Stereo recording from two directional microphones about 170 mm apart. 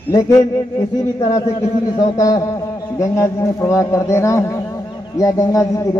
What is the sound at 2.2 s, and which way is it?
A man's voice, 20° left (ahead or behind).